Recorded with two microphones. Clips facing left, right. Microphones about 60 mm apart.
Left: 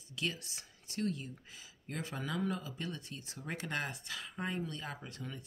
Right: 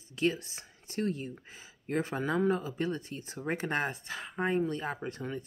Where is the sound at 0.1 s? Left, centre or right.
Right.